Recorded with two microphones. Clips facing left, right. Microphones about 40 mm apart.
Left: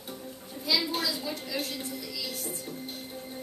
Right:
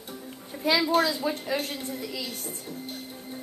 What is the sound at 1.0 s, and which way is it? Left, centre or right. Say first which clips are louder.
A woman's voice: right 6 dB; right.